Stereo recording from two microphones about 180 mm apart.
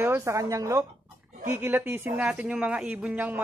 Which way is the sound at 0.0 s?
15° right (ahead or behind).